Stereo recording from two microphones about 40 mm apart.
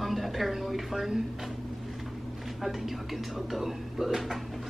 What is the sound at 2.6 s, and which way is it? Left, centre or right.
A woman's voice, centre.